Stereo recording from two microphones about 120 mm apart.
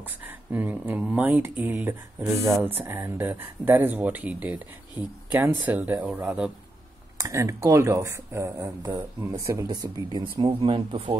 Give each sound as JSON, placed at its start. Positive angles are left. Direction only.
{"t": 0.0, "sound": "speech", "side_deg": -15}
{"t": 7.2, "sound": "speech", "side_deg": -25}
{"t": 10.2, "sound": "speech", "side_deg": -45}